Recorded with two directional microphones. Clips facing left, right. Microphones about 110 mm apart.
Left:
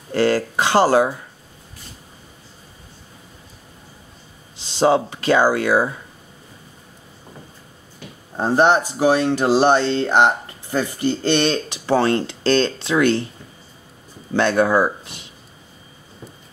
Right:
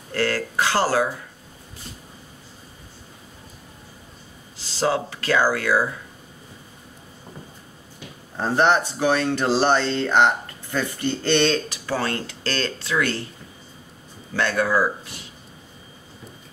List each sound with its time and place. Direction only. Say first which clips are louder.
0.1 s speech: left 6 dB; 20° left (ahead or behind)
4.6 s speech: left 6 dB; 20° left (ahead or behind)
8.4 s speech: left 3 dB; 20° left (ahead or behind)
14.3 s speech: left 5 dB; 25° left (ahead or behind)